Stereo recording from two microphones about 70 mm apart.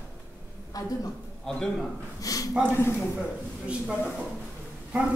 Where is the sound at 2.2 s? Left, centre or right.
Left.